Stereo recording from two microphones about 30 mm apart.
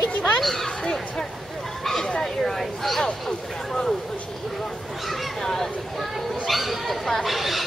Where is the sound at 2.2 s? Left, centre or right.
Centre.